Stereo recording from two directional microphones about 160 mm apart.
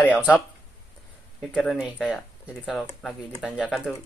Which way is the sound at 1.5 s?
5° left (ahead or behind).